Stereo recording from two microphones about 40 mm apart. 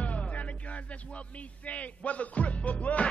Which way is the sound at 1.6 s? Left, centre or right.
Left.